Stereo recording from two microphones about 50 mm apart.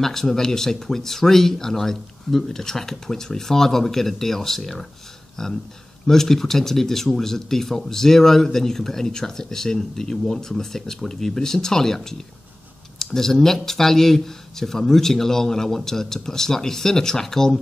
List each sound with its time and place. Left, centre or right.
0.0 s speech: centre